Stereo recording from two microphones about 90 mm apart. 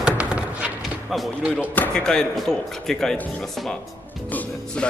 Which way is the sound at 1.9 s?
5° left (ahead or behind).